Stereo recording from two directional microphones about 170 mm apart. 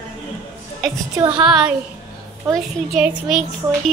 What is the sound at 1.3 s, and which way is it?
Music, 5° right (ahead or behind).